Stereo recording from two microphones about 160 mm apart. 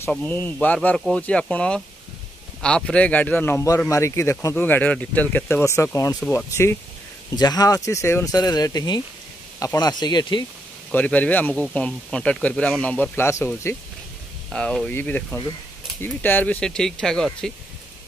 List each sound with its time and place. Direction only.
0.1 s speech: 10° left (ahead or behind); by 10.4 s 25° left (ahead or behind)
10.9 s speech: 10° left (ahead or behind)
14.5 s speech: 5° left (ahead or behind)